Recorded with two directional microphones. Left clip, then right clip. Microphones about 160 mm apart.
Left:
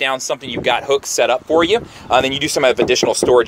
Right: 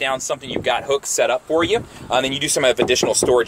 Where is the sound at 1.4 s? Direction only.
40° left (ahead or behind).